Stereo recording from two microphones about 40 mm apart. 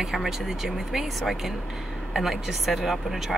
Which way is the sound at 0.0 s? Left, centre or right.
Centre.